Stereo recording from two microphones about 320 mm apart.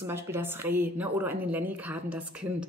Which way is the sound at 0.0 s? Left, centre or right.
Centre.